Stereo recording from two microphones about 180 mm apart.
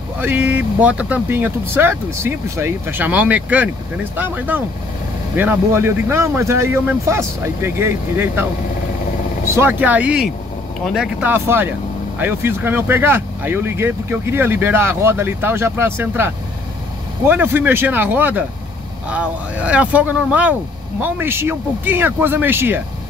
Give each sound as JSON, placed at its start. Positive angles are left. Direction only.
{"t": 0.2, "sound": "speech", "side_deg": -10}
{"t": 9.6, "sound": "speech", "side_deg": -10}
{"t": 17.3, "sound": "speech", "side_deg": -10}